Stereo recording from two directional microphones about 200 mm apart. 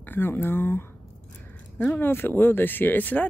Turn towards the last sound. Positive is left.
turn(degrees=10)  # may be behind; listen again after turning